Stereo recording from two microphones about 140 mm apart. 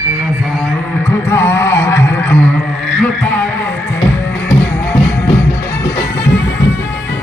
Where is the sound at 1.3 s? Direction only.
15° left (ahead or behind).